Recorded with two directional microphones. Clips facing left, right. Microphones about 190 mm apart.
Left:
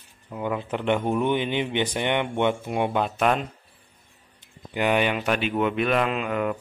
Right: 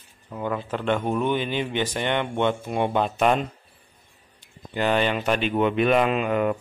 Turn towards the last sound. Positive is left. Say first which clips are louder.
# right 3 dB
turn(degrees=0)  # may be behind; listen again after turning